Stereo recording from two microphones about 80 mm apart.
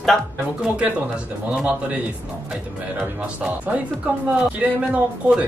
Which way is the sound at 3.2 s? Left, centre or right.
Centre.